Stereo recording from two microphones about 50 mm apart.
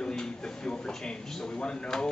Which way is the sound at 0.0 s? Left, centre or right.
Centre.